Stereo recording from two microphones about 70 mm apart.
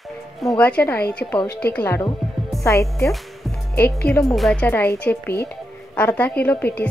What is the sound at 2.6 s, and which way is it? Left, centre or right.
Speech, left.